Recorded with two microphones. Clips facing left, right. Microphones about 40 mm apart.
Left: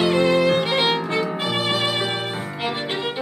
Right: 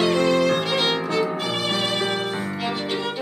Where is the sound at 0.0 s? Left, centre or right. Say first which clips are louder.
Left 1 dB; centre.